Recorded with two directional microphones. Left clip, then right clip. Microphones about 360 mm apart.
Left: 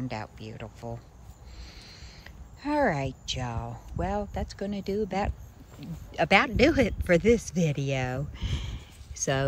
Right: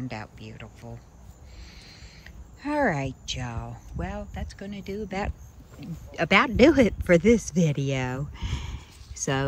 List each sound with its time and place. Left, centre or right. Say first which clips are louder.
0.1 s speech: left 1 dB; centre